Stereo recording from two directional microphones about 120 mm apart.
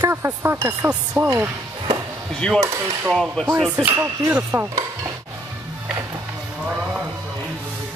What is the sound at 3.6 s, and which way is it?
Speech, 15° right (ahead or behind).